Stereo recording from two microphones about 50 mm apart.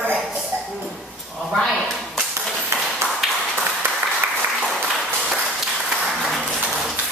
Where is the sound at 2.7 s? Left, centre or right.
Right.